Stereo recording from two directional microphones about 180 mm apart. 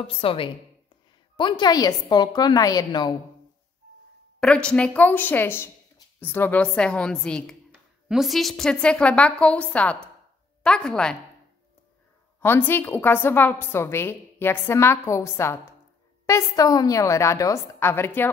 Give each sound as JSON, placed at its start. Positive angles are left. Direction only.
{"t": 0.0, "sound": "a woman's voice", "side_deg": 30}
{"t": 4.4, "sound": "a woman's voice", "side_deg": 5}
{"t": 12.4, "sound": "a woman's voice", "side_deg": 10}